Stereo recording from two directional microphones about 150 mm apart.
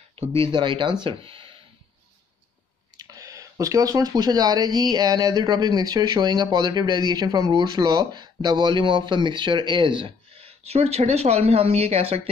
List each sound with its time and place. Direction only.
0.4 s speech: 35° right (ahead or behind)
3.0 s speech: 20° right (ahead or behind); by 12.2 s 40° right (ahead or behind)